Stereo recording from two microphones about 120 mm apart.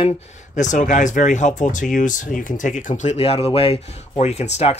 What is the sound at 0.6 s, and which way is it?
Speech, 90° left.